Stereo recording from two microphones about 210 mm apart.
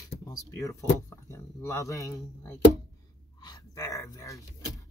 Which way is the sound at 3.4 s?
15° left (ahead or behind).